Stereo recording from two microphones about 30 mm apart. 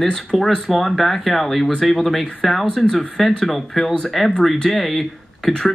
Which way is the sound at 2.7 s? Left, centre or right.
Centre.